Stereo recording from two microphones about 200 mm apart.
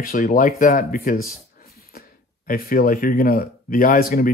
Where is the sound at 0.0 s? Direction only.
45° left (ahead or behind).